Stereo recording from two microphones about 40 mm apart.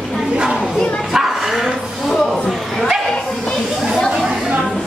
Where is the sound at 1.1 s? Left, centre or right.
Centre.